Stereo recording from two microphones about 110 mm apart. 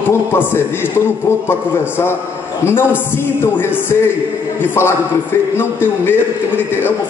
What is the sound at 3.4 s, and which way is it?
A man's voice, 20° left (ahead or behind).